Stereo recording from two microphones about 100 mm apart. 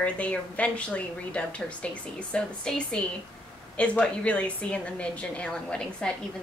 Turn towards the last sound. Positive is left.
turn(degrees=10)  # may be behind; listen again after turning